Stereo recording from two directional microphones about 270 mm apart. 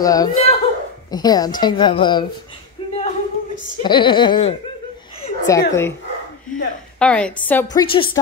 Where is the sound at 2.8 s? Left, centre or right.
Centre.